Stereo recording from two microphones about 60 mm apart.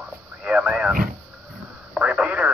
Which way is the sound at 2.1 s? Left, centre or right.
Centre.